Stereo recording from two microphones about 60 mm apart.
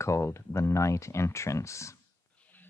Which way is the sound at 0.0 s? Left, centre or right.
Left.